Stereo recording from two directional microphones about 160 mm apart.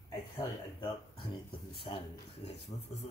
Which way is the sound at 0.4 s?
30° left (ahead or behind).